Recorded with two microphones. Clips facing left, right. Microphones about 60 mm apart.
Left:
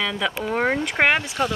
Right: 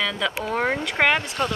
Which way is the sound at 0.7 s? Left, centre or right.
Centre.